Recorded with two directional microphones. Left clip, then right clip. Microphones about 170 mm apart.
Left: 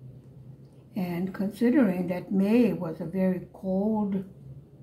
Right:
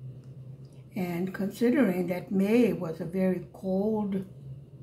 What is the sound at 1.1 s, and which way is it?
Speech, 20° right (ahead or behind).